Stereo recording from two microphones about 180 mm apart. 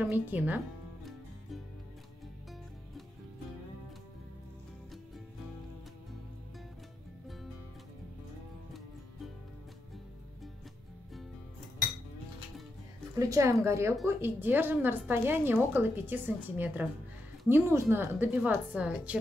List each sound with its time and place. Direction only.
0.0 s a woman's voice: 10° right (ahead or behind)
13.2 s a woman's voice: 15° right (ahead or behind)